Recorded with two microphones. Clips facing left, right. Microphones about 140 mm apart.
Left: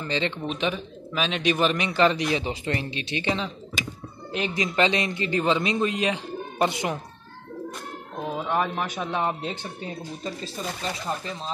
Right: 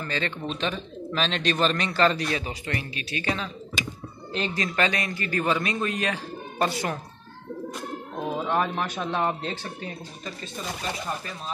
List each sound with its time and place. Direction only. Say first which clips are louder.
0.0 s a man's voice: left 2 dB; 15° left (ahead or behind)
8.3 s speech: even; centre (ahead or behind)